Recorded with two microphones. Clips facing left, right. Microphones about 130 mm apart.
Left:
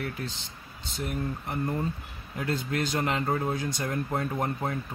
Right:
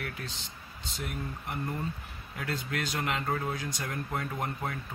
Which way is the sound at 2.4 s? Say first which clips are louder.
Left 5 dB; 30° left (ahead or behind).